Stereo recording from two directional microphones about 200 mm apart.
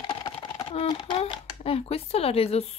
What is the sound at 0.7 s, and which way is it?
Speech, 25° left (ahead or behind).